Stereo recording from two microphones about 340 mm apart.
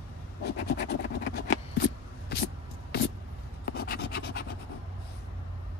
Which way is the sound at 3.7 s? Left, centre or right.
Left.